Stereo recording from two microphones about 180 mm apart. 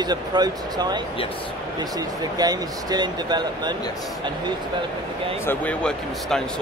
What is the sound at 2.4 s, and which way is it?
Speech, 20° right (ahead or behind).